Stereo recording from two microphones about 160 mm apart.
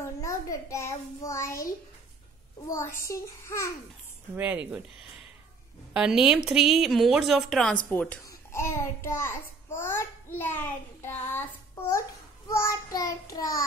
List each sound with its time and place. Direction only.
0.0 s a child's voice: 20° left (ahead or behind)
2.7 s a child's voice: 15° left (ahead or behind)
4.4 s a woman's voice: 10° right (ahead or behind); by 8.2 s 10° left (ahead or behind)
8.2 s a child's voice: 20° left (ahead or behind)
12.4 s child singing: 20° left (ahead or behind)